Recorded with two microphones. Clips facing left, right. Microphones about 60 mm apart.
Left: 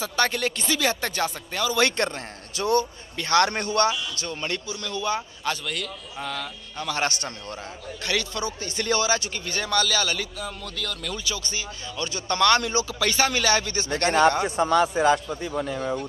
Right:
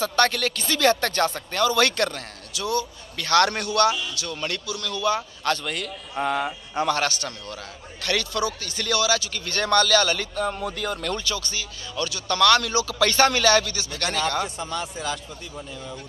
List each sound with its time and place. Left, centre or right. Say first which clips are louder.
0.0 s speech: right 3 dB; centre; by 2.9 s left
3.2 s speech: right 1 dB; left
5.4 s speech: right 4 dB; centre
6.2 s speech: right 8 dB; centre
7.0 s speech: right 1 dB; left
9.4 s speech: right 4 dB; centre
10.6 s speech: right 5 dB; centre
11.1 s speech: right 2 dB; centre
12.0 s speech: right 1 dB; left
13.0 s speech: right 5 dB; centre; by 14.5 s left
15.5 s speech: left 10 dB; left